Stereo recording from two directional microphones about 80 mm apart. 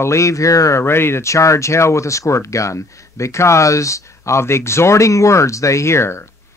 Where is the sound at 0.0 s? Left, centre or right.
Left.